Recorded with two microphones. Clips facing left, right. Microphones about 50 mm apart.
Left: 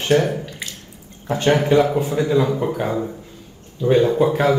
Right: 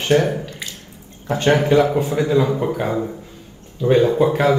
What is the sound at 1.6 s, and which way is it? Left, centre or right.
A man's voice, centre.